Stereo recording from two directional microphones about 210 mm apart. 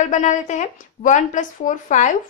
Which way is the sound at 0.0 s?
35° left (ahead or behind).